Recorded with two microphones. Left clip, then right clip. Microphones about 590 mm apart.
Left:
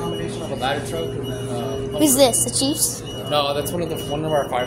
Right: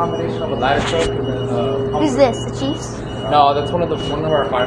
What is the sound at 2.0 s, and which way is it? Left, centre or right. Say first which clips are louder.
Speech: even; left.